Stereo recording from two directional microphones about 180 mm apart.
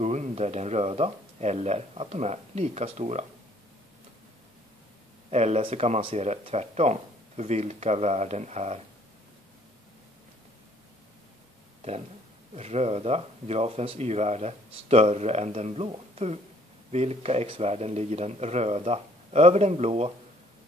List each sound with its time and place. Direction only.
0.0 s speech: 40° right (ahead or behind)
5.3 s speech: 35° right (ahead or behind)
12.5 s speech: 35° right (ahead or behind)